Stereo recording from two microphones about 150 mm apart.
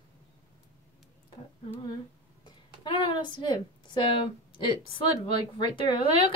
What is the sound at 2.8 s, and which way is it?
A woman's voice, 35° left (ahead or behind).